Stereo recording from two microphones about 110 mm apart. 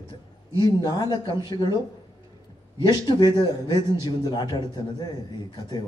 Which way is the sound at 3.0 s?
40° left (ahead or behind).